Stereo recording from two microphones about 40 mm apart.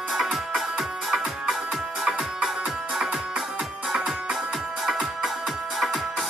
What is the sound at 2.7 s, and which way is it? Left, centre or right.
Music, centre.